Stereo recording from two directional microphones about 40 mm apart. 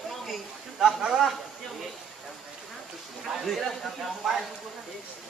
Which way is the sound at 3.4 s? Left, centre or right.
Centre.